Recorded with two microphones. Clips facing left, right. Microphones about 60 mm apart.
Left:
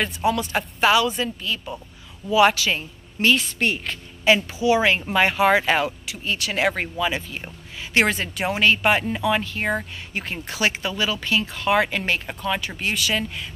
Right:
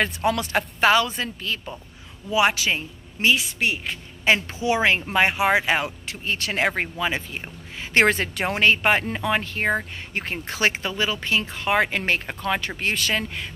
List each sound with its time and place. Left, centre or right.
0.0 s speech: right
0.8 s speech: right
2.3 s a woman's voice: right
3.3 s a woman's voice: centre
4.2 s speech: right
6.0 s speech: right
7.9 s speech: right
8.6 s speech: right
12.4 s speech: right